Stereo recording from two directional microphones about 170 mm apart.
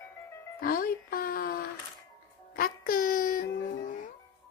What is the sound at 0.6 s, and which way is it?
Music, 60° left (ahead or behind).